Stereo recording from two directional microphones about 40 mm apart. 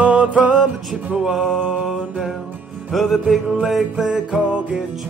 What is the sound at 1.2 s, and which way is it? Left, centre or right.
Music, centre.